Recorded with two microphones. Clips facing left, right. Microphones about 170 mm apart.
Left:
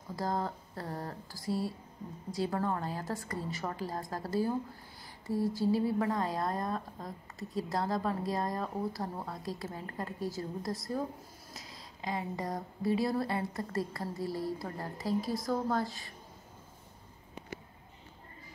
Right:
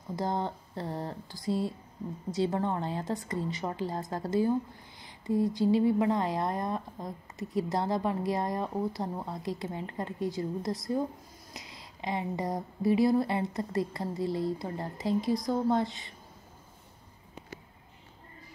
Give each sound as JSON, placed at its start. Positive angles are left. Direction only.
{"t": 0.1, "sound": "a woman's voice", "side_deg": -25}
{"t": 12.0, "sound": "a woman's voice", "side_deg": -25}
{"t": 15.1, "sound": "speech", "side_deg": 5}
{"t": 15.4, "sound": "a woman's voice", "side_deg": -20}